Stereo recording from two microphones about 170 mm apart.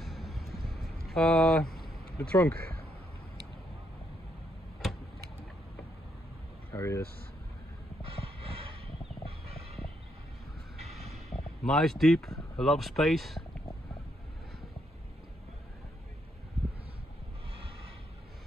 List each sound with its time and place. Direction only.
0.0 s vehicle: centre (ahead or behind)
1.0 s speech: 5° left (ahead or behind)
6.7 s vehicle: 15° left (ahead or behind)
11.3 s speech: 5° left (ahead or behind)